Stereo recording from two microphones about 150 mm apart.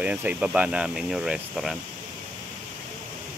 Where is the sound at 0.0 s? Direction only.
10° right (ahead or behind).